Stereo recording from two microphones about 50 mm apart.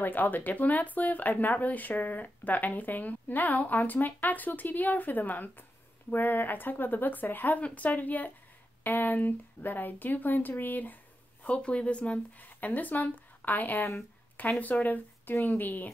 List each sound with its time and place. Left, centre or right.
0.0 s speech: left
11.4 s speech: left